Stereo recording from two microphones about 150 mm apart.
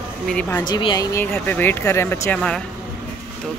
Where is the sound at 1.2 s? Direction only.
10° left (ahead or behind).